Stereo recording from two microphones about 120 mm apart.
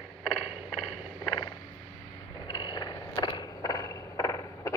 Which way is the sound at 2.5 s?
40° left (ahead or behind).